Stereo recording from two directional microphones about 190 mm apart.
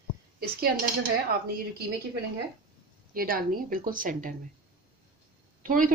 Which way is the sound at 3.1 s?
50° right (ahead or behind).